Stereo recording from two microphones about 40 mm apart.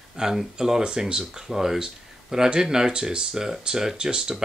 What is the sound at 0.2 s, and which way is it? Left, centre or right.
Speech, centre.